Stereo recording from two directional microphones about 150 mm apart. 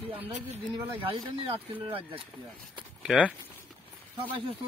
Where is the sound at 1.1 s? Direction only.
25° right (ahead or behind).